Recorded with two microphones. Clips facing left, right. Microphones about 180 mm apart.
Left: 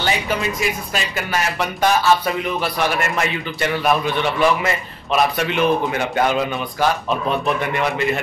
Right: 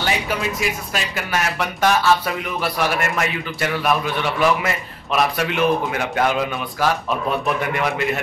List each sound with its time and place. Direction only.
0.0 s speech: 5° right (ahead or behind)